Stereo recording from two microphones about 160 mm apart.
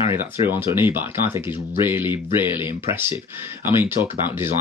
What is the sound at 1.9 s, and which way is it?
Speech, 15° right (ahead or behind).